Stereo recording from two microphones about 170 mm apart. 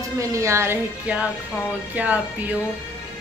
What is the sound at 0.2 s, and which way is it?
A woman's voice, 20° right (ahead or behind).